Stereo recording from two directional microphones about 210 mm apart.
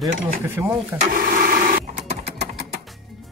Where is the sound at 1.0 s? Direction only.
40° right (ahead or behind).